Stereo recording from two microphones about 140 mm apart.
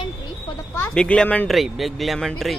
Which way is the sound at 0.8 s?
5° left (ahead or behind).